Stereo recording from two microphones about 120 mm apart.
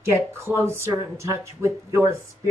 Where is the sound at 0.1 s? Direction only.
20° right (ahead or behind).